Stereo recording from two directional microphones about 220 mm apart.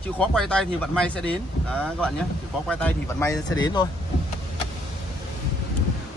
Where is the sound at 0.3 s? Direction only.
5° left (ahead or behind).